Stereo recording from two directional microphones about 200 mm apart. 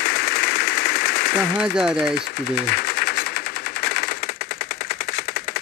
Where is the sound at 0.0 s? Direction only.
55° left (ahead or behind).